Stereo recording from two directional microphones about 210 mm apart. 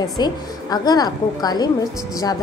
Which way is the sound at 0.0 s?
20° left (ahead or behind).